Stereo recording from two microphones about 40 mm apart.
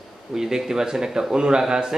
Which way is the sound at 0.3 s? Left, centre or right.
Centre.